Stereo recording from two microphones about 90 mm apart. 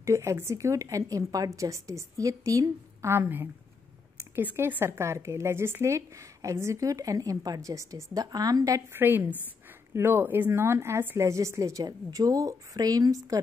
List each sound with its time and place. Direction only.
0.0 s speech: 35° right (ahead or behind)
8.9 s a woman's voice: 25° right (ahead or behind); by 13.4 s 40° right (ahead or behind)